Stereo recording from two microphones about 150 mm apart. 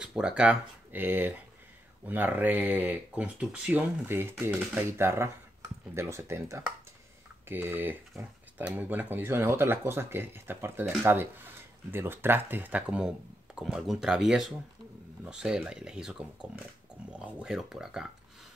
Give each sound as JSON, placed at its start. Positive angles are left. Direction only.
{"t": 0.0, "sound": "speech", "side_deg": -5}